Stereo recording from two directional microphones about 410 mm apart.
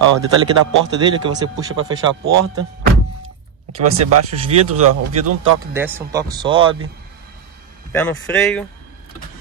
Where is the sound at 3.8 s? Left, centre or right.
Right.